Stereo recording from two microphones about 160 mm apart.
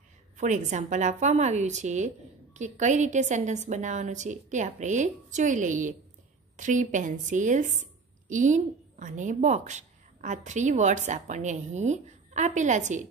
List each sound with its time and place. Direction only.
0.4 s a woman's voice: 50° right (ahead or behind)